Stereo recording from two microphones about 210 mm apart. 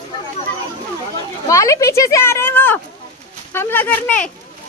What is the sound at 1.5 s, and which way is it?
Speech, 15° left (ahead or behind).